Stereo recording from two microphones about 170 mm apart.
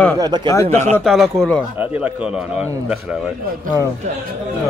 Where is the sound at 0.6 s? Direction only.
40° right (ahead or behind).